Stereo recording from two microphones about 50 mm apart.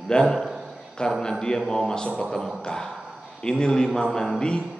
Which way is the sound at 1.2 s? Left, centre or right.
Centre.